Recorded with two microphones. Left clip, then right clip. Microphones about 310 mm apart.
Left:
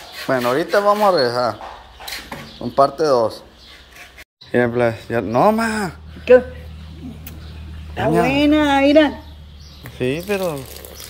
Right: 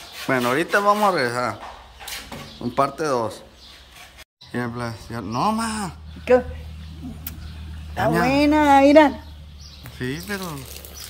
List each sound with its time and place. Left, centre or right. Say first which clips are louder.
0.3 s speech: left 3 dB; centre
2.6 s speech: left 6 dB; centre
4.5 s speech: left 12 dB; centre
8.3 s a woman's voice: even; right
9.9 s speech: left 8 dB; centre